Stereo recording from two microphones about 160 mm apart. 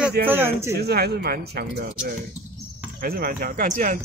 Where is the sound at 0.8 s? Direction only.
85° right.